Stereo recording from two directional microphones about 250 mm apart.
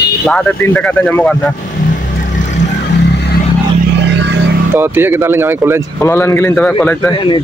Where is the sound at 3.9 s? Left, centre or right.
Right.